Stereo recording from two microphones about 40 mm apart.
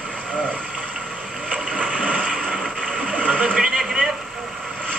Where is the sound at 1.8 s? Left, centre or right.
Right.